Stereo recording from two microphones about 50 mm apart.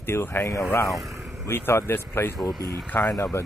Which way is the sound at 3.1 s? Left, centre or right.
Left.